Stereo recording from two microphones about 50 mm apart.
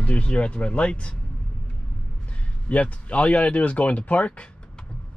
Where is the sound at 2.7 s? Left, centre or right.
Left.